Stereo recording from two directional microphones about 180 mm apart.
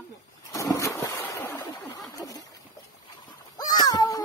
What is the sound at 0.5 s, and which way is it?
Splash, 15° left (ahead or behind).